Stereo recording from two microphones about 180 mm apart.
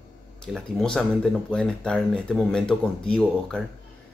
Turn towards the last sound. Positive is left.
turn(degrees=5)  # may be behind; listen again after turning